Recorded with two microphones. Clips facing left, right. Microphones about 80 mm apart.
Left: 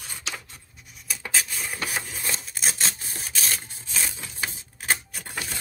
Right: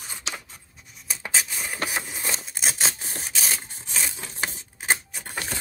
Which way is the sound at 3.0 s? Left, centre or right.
Right.